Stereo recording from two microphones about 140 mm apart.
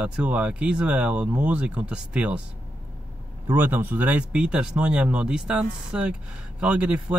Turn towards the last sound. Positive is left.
turn(degrees=-10)  # may be behind; listen again after turning